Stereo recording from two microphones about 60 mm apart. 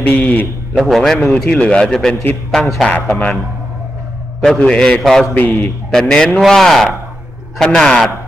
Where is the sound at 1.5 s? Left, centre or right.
Centre.